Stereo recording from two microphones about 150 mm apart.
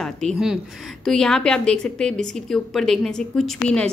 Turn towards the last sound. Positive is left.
turn(degrees=5)  # may be behind; listen again after turning